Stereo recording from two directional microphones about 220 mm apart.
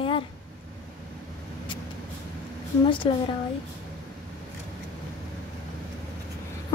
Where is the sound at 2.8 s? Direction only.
20° left (ahead or behind).